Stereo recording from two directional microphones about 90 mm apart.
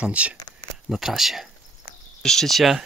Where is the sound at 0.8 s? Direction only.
5° right (ahead or behind).